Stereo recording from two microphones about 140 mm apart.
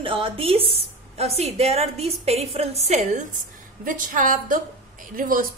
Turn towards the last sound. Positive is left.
turn(degrees=-80)